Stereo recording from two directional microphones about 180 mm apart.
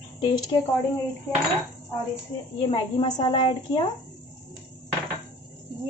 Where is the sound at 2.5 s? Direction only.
25° left (ahead or behind).